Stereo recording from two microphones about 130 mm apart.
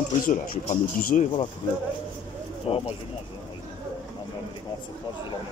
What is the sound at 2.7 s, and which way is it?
Speech, 45° left (ahead or behind).